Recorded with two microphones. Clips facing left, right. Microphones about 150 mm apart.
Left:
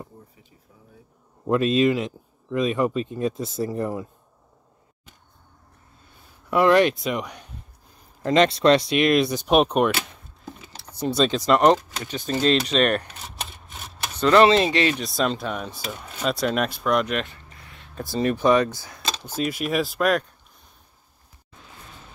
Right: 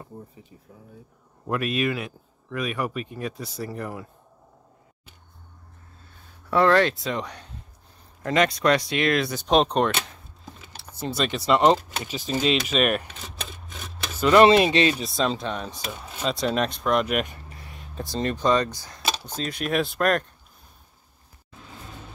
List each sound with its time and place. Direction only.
1.5 s speech: 25° left (ahead or behind)
6.5 s speech: 15° left (ahead or behind)
8.2 s speech: 25° left (ahead or behind); by 10.0 s 10° left (ahead or behind)
11.1 s speech: 5° right (ahead or behind)
13.7 s a sound: 90° right
14.3 s speech: 20° right (ahead or behind)
15.0 s speech: centre (ahead or behind)
17.5 s a sound: 25° right (ahead or behind)
18.1 s speech: 10° left (ahead or behind)